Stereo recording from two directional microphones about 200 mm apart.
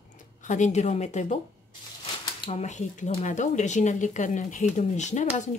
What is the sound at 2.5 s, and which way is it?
Speech, 35° left (ahead or behind).